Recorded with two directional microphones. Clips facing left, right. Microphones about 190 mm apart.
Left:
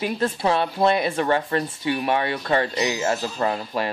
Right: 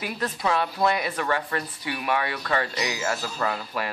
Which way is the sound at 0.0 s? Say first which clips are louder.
Left 5 dB; 30° left (ahead or behind).